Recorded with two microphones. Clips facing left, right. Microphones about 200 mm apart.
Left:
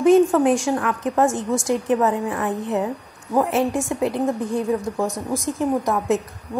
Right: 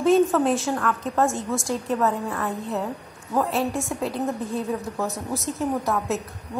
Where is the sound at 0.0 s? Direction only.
15° left (ahead or behind).